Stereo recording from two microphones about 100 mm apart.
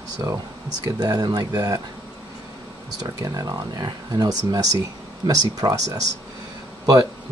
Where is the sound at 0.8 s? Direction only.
40° right (ahead or behind).